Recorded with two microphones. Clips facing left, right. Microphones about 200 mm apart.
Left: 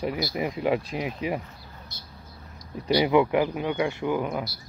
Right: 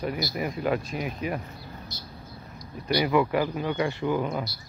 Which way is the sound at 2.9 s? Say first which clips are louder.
Left 3 dB; 20° left (ahead or behind).